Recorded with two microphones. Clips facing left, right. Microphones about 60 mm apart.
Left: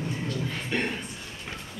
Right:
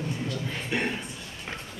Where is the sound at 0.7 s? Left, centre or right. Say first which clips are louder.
Even; centre.